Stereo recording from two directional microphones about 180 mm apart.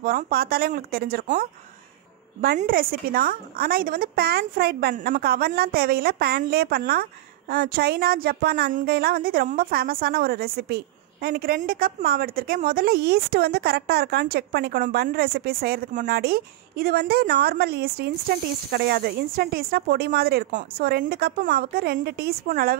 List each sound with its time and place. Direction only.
0.0 s speech: 55° right (ahead or behind)
2.4 s a woman's voice: 55° right (ahead or behind)